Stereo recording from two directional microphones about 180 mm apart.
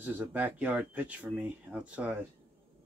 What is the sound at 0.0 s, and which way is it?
Speech, 10° right (ahead or behind).